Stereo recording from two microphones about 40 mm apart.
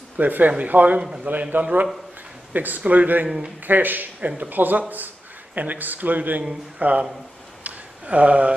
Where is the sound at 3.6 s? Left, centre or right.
Right.